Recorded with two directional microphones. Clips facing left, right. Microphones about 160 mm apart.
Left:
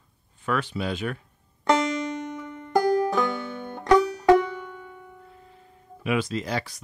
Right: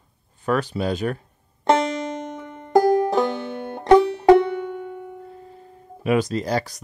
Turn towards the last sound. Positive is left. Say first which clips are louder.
# right 5 dB
turn(degrees=-40)  # may be behind; listen again after turning